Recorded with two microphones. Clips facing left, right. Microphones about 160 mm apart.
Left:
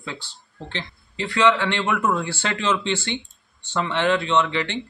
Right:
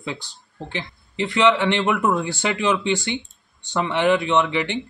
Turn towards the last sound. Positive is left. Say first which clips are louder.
# right 2 dB
turn(degrees=-15)  # may be behind; listen again after turning